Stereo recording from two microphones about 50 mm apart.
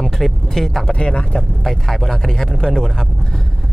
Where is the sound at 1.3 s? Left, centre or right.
Centre.